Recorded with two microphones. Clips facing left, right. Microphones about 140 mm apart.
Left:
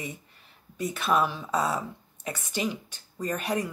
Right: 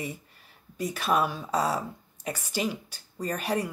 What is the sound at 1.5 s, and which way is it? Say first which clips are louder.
Speech: right 2 dB; 35° right (ahead or behind).